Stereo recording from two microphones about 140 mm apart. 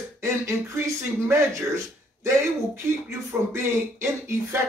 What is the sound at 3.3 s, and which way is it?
Speech, 10° right (ahead or behind).